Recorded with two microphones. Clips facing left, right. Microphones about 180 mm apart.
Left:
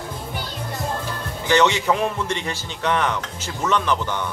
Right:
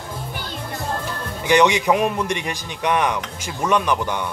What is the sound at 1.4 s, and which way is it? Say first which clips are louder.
A man's voice: right 2 dB; 15° right (ahead or behind).